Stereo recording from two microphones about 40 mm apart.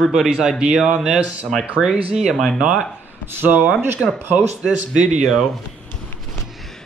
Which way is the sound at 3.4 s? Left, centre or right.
Right.